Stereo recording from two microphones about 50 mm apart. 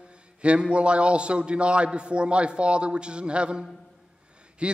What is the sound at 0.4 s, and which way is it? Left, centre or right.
A man's voice, right.